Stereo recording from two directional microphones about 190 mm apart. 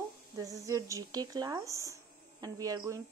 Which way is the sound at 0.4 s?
15° right (ahead or behind).